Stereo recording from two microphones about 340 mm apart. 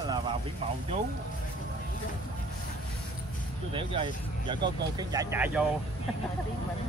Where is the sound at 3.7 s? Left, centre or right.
Centre.